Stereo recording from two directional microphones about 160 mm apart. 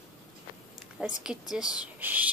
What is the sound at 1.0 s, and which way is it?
A woman's voice, 5° right (ahead or behind).